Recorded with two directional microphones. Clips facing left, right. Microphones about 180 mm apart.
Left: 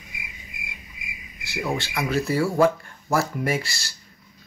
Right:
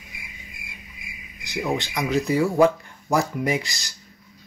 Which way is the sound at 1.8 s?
15° right (ahead or behind).